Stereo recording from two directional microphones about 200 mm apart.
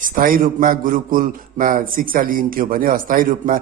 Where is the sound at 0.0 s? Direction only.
45° right (ahead or behind).